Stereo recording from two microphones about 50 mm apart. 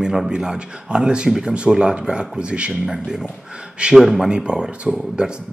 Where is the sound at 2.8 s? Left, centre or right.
Centre.